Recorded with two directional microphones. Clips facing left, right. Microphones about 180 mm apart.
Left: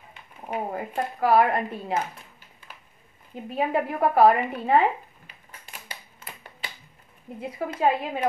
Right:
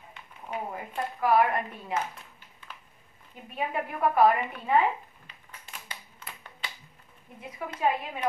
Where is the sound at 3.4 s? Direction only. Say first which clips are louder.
Left 7 dB; 35° left (ahead or behind).